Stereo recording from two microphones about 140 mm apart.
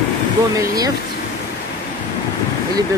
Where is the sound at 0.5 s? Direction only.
25° right (ahead or behind).